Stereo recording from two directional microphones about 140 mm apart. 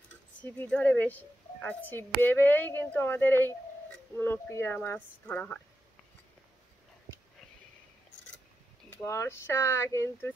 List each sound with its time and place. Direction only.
0.4 s a woman's voice: 10° left (ahead or behind)
8.9 s a woman's voice: 20° left (ahead or behind)